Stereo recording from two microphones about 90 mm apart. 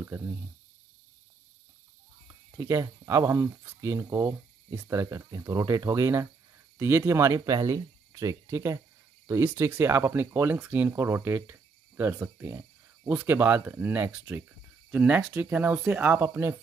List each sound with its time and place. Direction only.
2.5 s speech: 35° right (ahead or behind)
5.0 s speech: 40° right (ahead or behind)
9.4 s speech: 25° right (ahead or behind)